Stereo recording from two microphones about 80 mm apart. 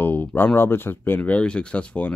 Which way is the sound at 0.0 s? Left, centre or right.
Left.